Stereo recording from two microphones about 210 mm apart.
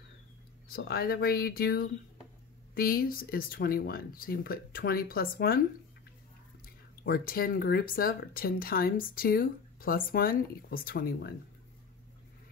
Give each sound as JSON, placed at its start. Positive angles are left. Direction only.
{"t": 0.7, "sound": "speech", "side_deg": 45}
{"t": 6.6, "sound": "speech", "side_deg": 45}